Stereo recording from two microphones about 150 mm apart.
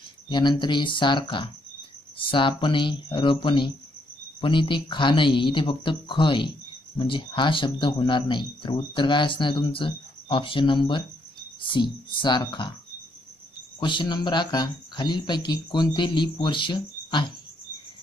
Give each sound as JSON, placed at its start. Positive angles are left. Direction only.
{"t": 0.3, "sound": "speech", "side_deg": 30}
{"t": 13.7, "sound": "speech", "side_deg": 30}